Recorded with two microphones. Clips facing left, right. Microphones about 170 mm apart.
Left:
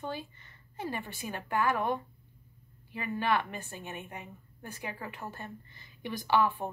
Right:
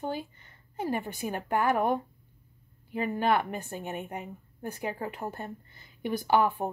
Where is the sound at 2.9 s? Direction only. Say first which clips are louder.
Right 4 dB; 45° right (ahead or behind).